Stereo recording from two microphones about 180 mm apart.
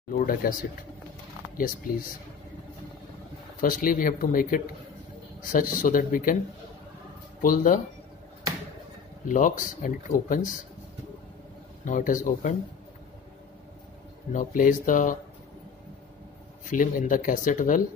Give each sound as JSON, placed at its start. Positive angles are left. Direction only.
{"t": 0.1, "sound": "speech", "side_deg": 50}
{"t": 3.6, "sound": "speech", "side_deg": 50}
{"t": 7.4, "sound": "speech", "side_deg": 50}
{"t": 9.3, "sound": "speech", "side_deg": 45}
{"t": 11.8, "sound": "speech", "side_deg": 45}
{"t": 14.3, "sound": "speech", "side_deg": 50}
{"t": 16.6, "sound": "speech", "side_deg": 50}